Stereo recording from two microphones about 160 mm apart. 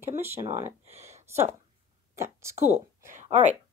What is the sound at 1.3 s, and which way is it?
Speech, 15° right (ahead or behind).